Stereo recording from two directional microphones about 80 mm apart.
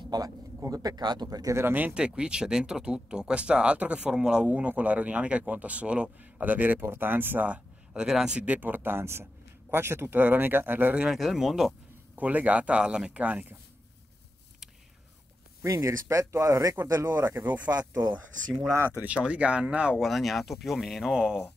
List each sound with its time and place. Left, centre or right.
0.1 s speech: right
1.5 s speech: right
2.0 s speech: centre
11.1 s speech: centre
12.2 s speech: centre
15.6 s speech: right
16.8 s speech: right
18.7 s speech: right
20.1 s speech: centre